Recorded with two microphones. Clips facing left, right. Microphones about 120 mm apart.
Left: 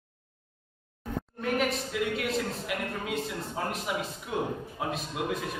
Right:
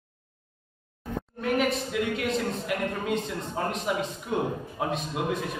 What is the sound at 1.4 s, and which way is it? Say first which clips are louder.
A man's voice: right 3 dB; centre (ahead or behind).